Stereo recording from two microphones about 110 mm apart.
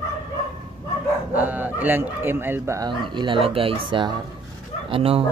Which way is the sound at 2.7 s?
45° right (ahead or behind).